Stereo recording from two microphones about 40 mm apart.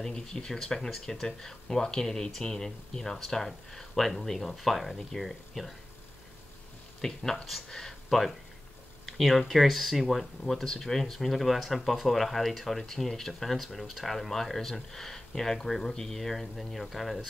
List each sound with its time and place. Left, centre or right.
0.0 s speech: centre
7.0 s speech: centre
9.0 s a sound: centre
9.5 s speech: centre